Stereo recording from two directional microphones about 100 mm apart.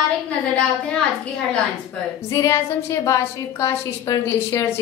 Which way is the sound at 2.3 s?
30° left (ahead or behind).